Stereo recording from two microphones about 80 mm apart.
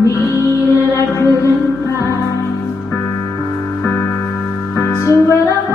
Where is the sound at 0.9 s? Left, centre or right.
Left.